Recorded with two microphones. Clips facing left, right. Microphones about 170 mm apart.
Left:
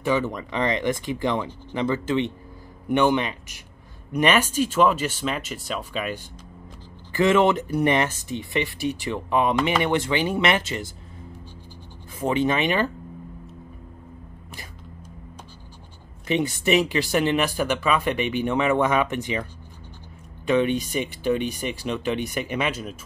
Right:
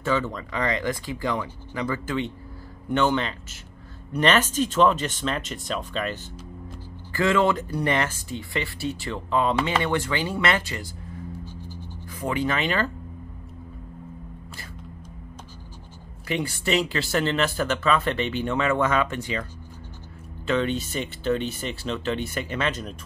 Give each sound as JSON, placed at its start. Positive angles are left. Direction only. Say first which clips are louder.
{"t": 0.0, "sound": "speech", "louder": "left 2 dB", "side_deg": 15}
{"t": 12.2, "sound": "speech", "louder": "left 4 dB", "side_deg": 20}
{"t": 16.3, "sound": "speech", "louder": "left 4 dB", "side_deg": 20}
{"t": 20.4, "sound": "speech", "louder": "left 3 dB", "side_deg": 15}